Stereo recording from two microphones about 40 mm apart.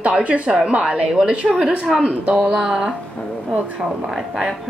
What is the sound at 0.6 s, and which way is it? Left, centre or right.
A woman's voice, right.